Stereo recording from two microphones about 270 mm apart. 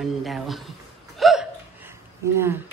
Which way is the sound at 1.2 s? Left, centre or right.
Centre.